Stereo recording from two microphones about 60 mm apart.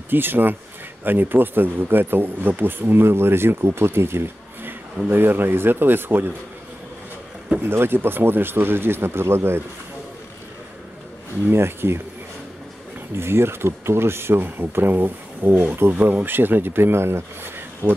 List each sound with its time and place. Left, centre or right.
0.1 s speech: right
7.6 s speech: right
11.5 s speech: right
13.1 s speech: right